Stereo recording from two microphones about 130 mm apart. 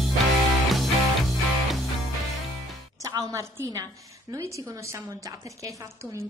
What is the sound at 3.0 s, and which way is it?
A woman's voice, 25° right (ahead or behind).